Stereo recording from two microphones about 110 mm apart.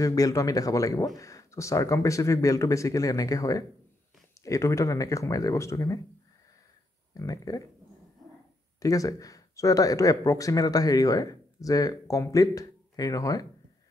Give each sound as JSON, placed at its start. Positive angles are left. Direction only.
{"t": 0.0, "sound": "speech", "side_deg": 30}
{"t": 7.2, "sound": "speech", "side_deg": 30}
{"t": 8.7, "sound": "speech", "side_deg": 30}